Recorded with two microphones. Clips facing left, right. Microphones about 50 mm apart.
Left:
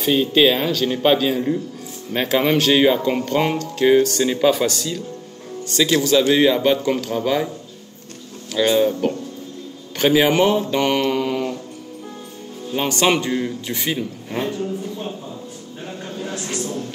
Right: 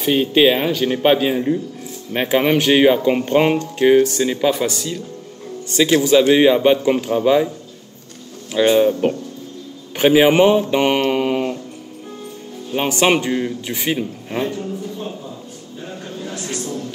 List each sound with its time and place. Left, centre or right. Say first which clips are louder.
0.0 s speech: right 1 dB; right
8.5 s speech: right 3 dB; right
9.9 s mantra: right 3 dB; right
12.7 s speech: right 2 dB; right
14.6 s speech: left 1 dB; left
16.2 s vehicle: left 1 dB; left